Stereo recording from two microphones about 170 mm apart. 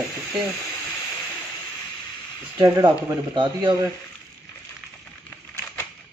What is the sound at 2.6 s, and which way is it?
Speech, 20° right (ahead or behind).